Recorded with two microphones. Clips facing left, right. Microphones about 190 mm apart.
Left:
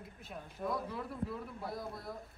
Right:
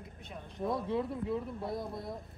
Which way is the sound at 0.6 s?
25° right (ahead or behind).